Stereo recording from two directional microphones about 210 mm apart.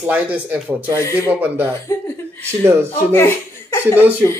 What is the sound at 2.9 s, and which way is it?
Speech, 10° left (ahead or behind).